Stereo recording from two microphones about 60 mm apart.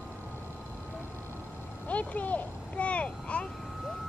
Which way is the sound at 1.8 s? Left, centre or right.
Left.